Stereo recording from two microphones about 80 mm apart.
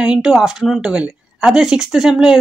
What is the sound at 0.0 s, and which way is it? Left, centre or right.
Speech, centre.